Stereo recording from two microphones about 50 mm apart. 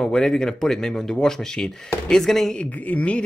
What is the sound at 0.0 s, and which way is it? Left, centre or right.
Speech, centre.